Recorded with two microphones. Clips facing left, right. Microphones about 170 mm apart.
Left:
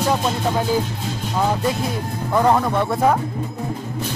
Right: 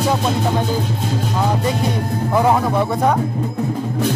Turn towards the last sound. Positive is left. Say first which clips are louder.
# right 1 dB
turn(degrees=0)  # may be behind; listen again after turning